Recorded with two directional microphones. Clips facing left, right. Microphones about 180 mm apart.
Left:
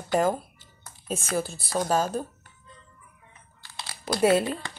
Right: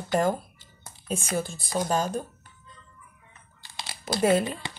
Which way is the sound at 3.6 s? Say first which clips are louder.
Even; 20° right (ahead or behind).